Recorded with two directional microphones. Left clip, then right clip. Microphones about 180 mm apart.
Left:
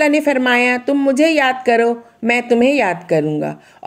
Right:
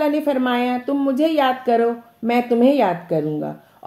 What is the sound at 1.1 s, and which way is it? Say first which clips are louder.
Speech: left 3 dB; 30° left (ahead or behind).